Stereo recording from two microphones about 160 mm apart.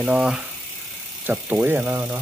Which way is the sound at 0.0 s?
5° right (ahead or behind).